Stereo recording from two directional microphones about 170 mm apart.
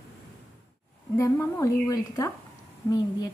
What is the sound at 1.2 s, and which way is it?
A woman's voice, 20° left (ahead or behind).